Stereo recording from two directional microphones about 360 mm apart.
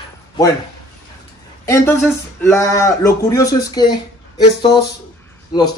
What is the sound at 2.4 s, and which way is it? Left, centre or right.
A man's voice, centre.